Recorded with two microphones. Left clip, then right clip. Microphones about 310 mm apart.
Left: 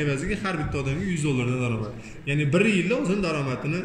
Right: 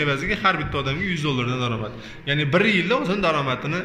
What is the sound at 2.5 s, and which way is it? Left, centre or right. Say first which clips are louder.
Speech: right 3 dB; centre.